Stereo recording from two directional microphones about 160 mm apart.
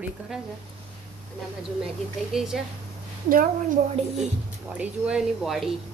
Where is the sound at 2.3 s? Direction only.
Centre (ahead or behind).